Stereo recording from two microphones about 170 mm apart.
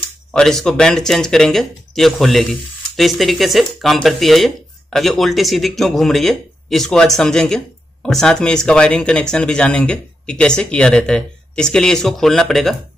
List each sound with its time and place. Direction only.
0.3 s speech: 5° left (ahead or behind)